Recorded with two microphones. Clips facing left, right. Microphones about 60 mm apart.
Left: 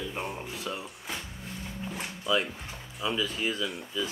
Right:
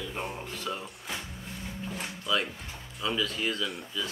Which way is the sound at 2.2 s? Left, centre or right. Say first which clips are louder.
Left 2 dB; centre.